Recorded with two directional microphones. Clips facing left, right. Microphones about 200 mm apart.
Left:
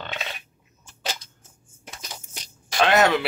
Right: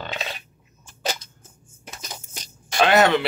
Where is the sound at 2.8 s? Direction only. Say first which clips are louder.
Right 2 dB; centre (ahead or behind).